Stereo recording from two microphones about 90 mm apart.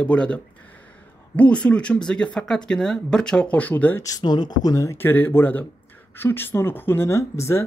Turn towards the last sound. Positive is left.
turn(degrees=30)  # may be behind; listen again after turning